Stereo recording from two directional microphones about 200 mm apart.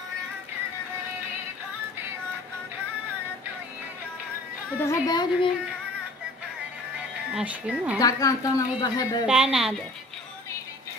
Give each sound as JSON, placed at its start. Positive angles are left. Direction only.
{"t": 4.7, "sound": "a woman's voice", "side_deg": 15}
{"t": 7.3, "sound": "speech", "side_deg": -5}
{"t": 8.0, "sound": "speech", "side_deg": 15}
{"t": 9.2, "sound": "a woman's voice", "side_deg": -5}